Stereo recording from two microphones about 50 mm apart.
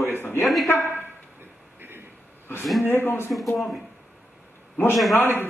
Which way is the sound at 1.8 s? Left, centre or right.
Right.